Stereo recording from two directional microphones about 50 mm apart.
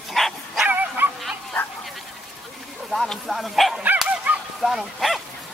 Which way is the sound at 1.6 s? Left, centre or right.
Left.